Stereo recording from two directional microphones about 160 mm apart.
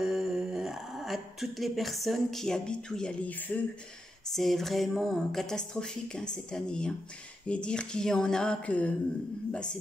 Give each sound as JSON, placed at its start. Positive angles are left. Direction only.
{"t": 0.0, "sound": "speech", "side_deg": -5}
{"t": 4.3, "sound": "a sound", "side_deg": 0}
{"t": 9.5, "sound": "speech", "side_deg": 5}